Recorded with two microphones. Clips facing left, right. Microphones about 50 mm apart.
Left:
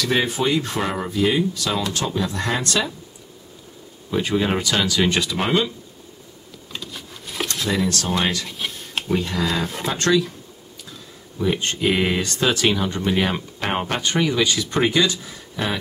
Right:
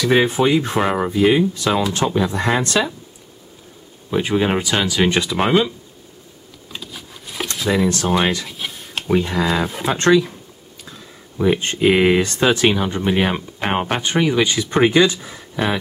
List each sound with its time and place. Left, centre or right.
0.0 s speech: centre
4.1 s speech: centre
6.7 s a sound: centre
7.5 s speech: centre
8.5 s a sound: centre
9.1 s speech: centre
9.9 s speech: right